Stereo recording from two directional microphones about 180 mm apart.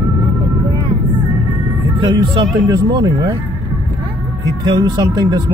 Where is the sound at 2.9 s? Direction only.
20° right (ahead or behind).